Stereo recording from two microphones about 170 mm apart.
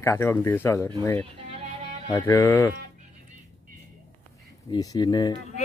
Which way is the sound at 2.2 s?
15° left (ahead or behind).